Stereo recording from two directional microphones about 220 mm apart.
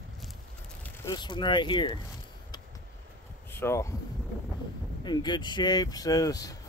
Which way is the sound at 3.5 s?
10° left (ahead or behind).